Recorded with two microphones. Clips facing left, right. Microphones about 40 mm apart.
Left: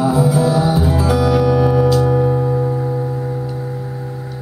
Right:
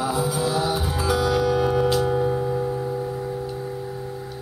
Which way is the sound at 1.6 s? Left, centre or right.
Left.